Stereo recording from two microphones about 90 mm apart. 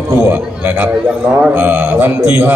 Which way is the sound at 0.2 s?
15° right (ahead or behind).